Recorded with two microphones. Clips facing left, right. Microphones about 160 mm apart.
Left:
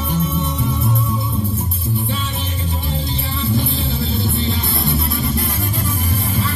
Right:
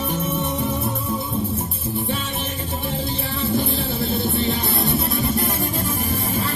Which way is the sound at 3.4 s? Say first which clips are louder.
Left 1 dB; 45° right (ahead or behind).